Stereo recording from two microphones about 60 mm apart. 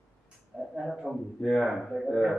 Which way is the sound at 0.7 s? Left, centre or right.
Centre.